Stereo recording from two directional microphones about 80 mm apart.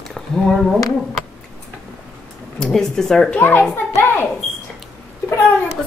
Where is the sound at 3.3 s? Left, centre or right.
Left.